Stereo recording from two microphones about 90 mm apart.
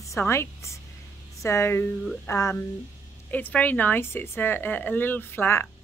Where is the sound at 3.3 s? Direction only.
20° left (ahead or behind).